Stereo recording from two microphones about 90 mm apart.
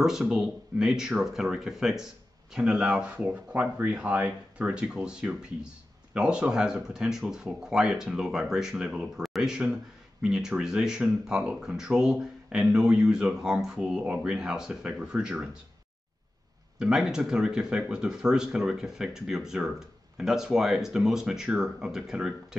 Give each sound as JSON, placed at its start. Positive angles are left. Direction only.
{"t": 0.0, "sound": "speech", "side_deg": -5}
{"t": 16.7, "sound": "speech", "side_deg": -5}